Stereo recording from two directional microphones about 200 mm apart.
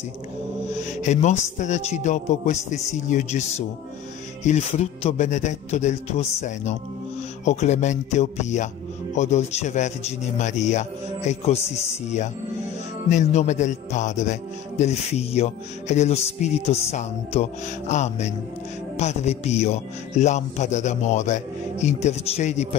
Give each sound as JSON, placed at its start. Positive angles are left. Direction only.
{"t": 0.7, "sound": "a man's voice", "side_deg": 35}
{"t": 7.4, "sound": "a man's voice", "side_deg": 35}